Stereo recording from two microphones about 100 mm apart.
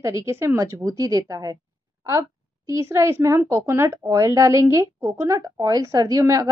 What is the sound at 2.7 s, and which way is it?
A woman's voice, 30° right (ahead or behind).